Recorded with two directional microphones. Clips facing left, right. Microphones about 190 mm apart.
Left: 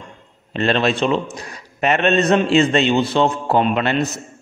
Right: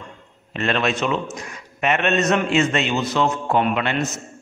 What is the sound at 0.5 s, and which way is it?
A man's voice, 30° left (ahead or behind).